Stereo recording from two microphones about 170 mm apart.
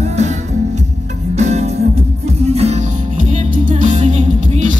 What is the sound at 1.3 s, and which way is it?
Music, 40° right (ahead or behind).